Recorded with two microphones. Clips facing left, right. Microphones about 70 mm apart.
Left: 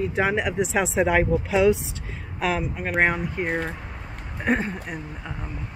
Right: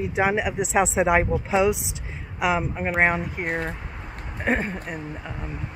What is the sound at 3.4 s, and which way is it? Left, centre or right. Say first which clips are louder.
Speech: left 1 dB; centre.